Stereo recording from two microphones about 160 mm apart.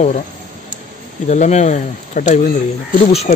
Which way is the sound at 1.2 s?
45° left (ahead or behind).